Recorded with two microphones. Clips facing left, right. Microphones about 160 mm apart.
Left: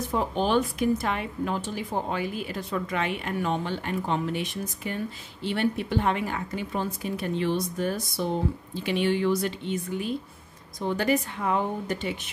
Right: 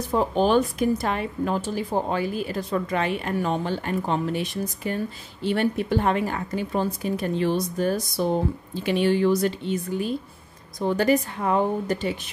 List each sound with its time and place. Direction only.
0.1 s speech: 40° right (ahead or behind)